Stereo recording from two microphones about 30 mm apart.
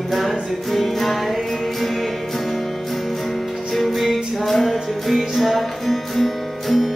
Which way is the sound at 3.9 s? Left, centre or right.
Centre.